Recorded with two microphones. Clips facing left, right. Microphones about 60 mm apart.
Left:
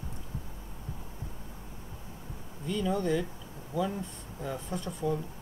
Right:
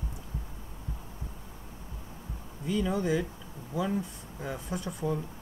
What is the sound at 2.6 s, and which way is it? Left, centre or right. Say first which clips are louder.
Speech: right 1 dB; centre.